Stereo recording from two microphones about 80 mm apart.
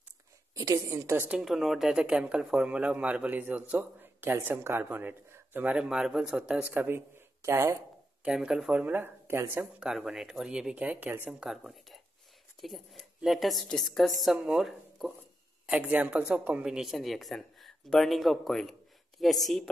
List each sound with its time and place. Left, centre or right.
0.6 s a woman's voice: right
1.1 s speech: right
1.4 s speech: centre
6.6 s speech: right
7.4 s speech: right
8.2 s speech: centre
9.8 s speech: centre
11.2 s a woman's voice: centre
16.6 s a woman's voice: centre